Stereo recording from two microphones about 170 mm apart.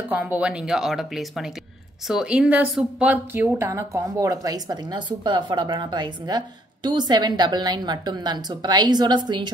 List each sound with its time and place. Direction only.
0.1 s a woman's voice: 10° right (ahead or behind); by 9.5 s 25° right (ahead or behind)